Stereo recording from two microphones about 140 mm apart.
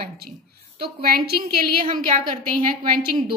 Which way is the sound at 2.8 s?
90° right.